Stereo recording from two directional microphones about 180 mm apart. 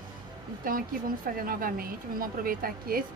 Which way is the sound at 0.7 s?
50° right (ahead or behind).